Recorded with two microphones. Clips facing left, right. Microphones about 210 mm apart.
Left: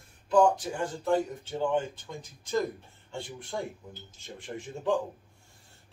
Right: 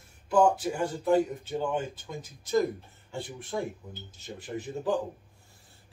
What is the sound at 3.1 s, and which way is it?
Speech, 5° right (ahead or behind).